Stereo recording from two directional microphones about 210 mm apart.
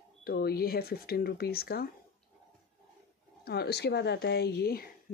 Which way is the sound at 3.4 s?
50° left (ahead or behind).